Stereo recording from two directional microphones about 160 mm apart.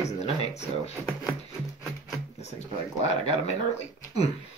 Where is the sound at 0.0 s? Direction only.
45° left (ahead or behind).